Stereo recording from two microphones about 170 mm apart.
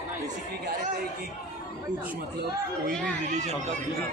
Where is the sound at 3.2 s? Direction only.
45° right (ahead or behind).